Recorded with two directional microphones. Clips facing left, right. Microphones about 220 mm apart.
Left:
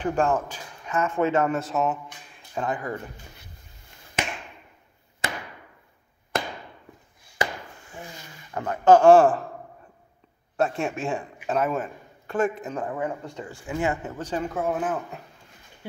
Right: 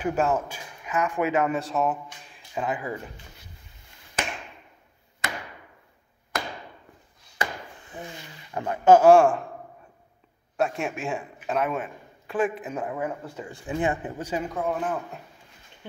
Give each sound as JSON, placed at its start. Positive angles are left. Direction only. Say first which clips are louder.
{"t": 0.0, "sound": "speech", "louder": "left 1 dB", "side_deg": -5}
{"t": 1.5, "sound": "speech", "louder": "even", "side_deg": 0}
{"t": 5.2, "sound": "a sound", "louder": "left 2 dB", "side_deg": 30}
{"t": 8.5, "sound": "speech", "louder": "even", "side_deg": -15}
{"t": 10.6, "sound": "a man's voice", "louder": "left 2 dB", "side_deg": 0}
{"t": 13.7, "sound": "speech", "louder": "even", "side_deg": -20}
{"t": 14.5, "sound": "speech", "louder": "left 3 dB", "side_deg": 5}